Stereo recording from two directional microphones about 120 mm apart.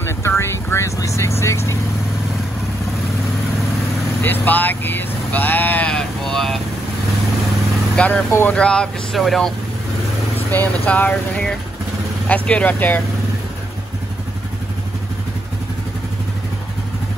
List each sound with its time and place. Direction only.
0.4 s vehicle: 25° left (ahead or behind)
4.2 s vehicle: 15° left (ahead or behind)
7.9 s speech: 10° left (ahead or behind)
10.5 s speech: 15° left (ahead or behind)